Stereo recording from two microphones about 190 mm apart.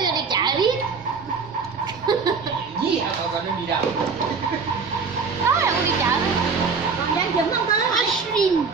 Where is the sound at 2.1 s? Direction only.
20° right (ahead or behind).